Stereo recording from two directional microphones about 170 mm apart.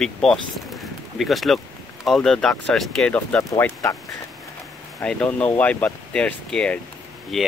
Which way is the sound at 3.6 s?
20° left (ahead or behind).